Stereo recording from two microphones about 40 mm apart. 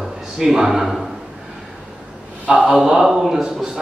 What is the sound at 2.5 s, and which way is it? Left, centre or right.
Speech, right.